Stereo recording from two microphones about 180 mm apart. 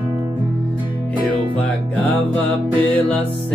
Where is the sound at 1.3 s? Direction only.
10° left (ahead or behind).